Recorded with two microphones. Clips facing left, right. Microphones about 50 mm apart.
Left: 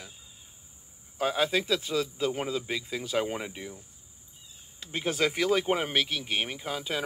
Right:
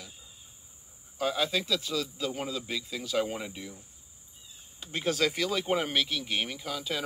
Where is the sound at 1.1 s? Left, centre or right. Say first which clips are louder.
Left 2 dB; left.